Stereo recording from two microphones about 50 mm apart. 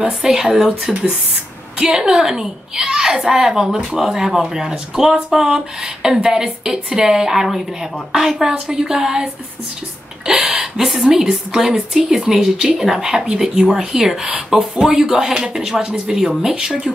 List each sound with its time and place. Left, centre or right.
0.0 s a child's voice: centre
10.2 s a sound: centre
10.6 s a child's voice: centre